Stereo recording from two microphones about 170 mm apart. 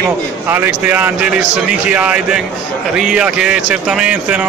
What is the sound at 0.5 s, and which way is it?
Speech, 10° right (ahead or behind).